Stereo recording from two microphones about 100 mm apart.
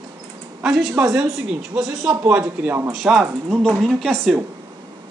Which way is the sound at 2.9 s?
Centre (ahead or behind).